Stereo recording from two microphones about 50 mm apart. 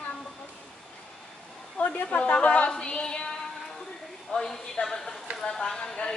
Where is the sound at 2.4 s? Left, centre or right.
Left.